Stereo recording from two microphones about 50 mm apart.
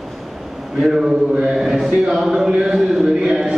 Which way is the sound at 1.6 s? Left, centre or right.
Centre.